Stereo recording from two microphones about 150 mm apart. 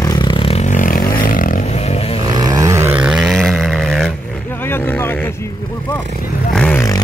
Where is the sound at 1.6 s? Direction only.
45° left (ahead or behind).